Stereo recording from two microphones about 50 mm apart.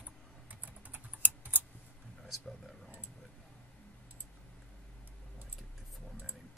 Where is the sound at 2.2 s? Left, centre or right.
Centre.